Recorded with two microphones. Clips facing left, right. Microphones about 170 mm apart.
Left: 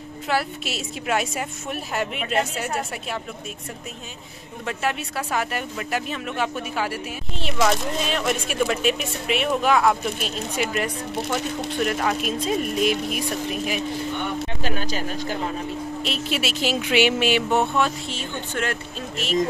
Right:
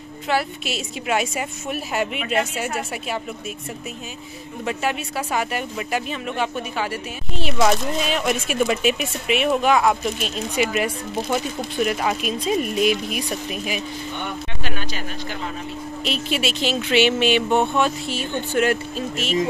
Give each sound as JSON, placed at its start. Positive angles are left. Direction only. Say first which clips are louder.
{"t": 0.3, "sound": "speech", "louder": "right 2 dB", "side_deg": 0}
{"t": 4.6, "sound": "speech", "louder": "right 2 dB", "side_deg": -5}
{"t": 14.6, "sound": "speech", "louder": "left 3 dB", "side_deg": 40}
{"t": 16.0, "sound": "speech", "louder": "right 4 dB", "side_deg": 0}